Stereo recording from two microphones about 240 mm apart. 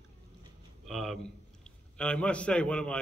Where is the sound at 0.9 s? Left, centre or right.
Centre.